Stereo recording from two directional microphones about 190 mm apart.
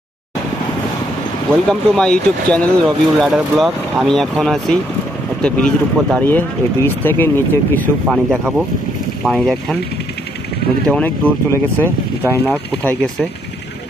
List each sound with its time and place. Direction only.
1.7 s speech: 5° left (ahead or behind)
10.9 s speech: 10° left (ahead or behind)